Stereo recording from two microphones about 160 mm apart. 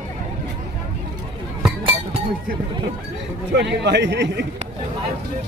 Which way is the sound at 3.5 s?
90° right.